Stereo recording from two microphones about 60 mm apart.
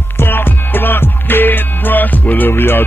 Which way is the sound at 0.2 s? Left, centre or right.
Left.